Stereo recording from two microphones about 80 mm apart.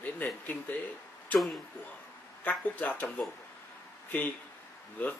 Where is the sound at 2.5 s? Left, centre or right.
Centre.